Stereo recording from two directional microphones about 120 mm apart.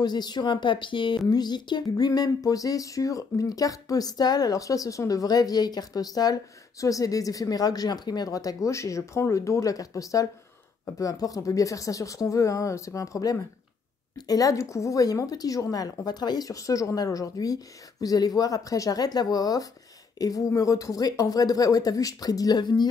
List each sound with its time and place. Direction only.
0.0 s a woman's voice: 35° left (ahead or behind)